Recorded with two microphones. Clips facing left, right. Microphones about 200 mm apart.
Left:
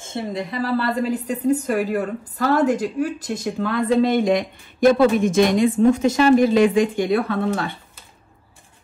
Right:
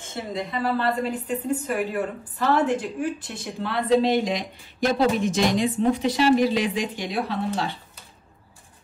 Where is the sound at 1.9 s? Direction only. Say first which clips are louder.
Left 4 dB; 40° left (ahead or behind).